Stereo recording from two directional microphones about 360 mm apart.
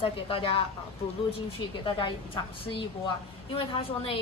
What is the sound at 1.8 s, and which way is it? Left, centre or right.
A woman's voice, centre.